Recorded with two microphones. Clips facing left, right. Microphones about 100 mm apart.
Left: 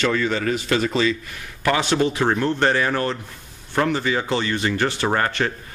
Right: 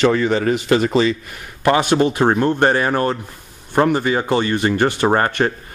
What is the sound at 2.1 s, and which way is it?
Speech, 20° right (ahead or behind).